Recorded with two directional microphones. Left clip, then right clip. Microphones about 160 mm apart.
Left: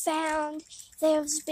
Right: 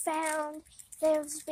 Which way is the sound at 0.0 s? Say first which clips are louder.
Left 4 dB; 25° left (ahead or behind).